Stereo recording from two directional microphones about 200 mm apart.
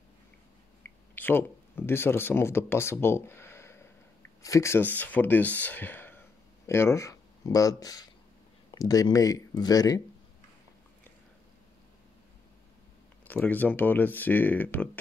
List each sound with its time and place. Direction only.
1.1 s speech: 10° left (ahead or behind)
13.3 s speech: 10° left (ahead or behind)